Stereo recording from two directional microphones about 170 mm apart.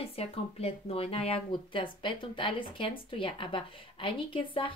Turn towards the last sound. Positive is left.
turn(degrees=30)  # may be behind; listen again after turning